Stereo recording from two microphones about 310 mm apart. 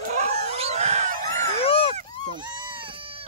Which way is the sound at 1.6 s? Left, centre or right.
Centre.